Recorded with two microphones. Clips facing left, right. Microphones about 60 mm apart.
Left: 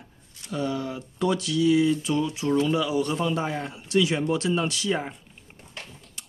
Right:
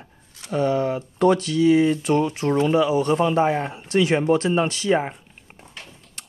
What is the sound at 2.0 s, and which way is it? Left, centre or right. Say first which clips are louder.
Speech: right 5 dB; right.